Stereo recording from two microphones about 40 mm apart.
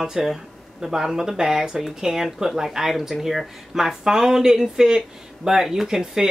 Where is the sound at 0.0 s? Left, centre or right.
Centre.